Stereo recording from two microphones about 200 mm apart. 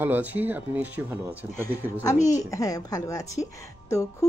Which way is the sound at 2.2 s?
15° left (ahead or behind).